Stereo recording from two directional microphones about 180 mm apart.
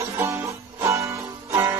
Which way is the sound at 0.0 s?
15° right (ahead or behind).